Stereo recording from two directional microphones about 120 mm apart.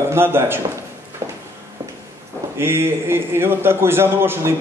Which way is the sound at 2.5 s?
20° right (ahead or behind).